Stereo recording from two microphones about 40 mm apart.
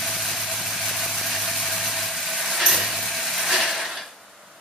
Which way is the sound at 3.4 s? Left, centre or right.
Centre.